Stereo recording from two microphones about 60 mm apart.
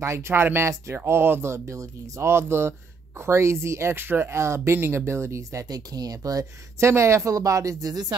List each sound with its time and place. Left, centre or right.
0.0 s speech: right
6.8 s speech: right